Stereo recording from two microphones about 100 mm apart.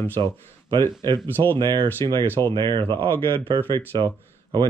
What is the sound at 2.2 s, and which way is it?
Speech, 25° left (ahead or behind).